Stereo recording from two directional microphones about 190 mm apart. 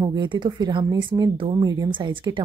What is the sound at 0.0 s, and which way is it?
Speech, 25° right (ahead or behind).